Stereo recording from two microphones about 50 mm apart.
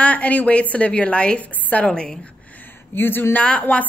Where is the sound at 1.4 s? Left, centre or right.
Left.